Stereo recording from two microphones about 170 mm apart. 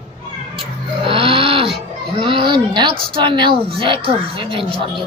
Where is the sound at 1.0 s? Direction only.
30° right (ahead or behind).